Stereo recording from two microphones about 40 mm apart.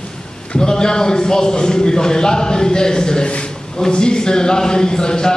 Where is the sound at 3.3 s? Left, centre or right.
Left.